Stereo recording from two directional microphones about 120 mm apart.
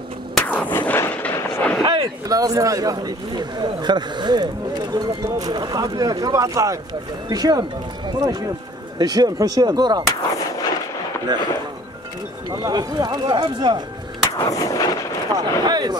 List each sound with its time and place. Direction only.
0.3 s artillery fire: 10° left (ahead or behind)
1.8 s speech: 40° right (ahead or behind)
11.3 s speech: 40° right (ahead or behind)
14.4 s artillery fire: 30° left (ahead or behind)
15.3 s speech: 35° right (ahead or behind)